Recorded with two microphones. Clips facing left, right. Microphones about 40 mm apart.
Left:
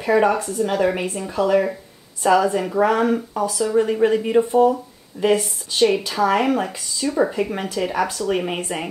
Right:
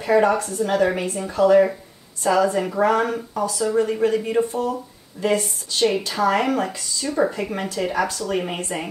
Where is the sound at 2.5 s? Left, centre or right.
Centre.